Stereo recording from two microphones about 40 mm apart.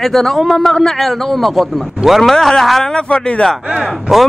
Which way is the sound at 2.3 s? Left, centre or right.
Centre.